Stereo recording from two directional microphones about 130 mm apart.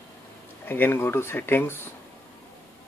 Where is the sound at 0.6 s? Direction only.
15° left (ahead or behind).